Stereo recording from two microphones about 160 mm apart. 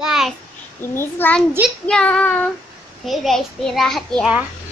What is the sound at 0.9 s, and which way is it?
A child's voice, 15° left (ahead or behind).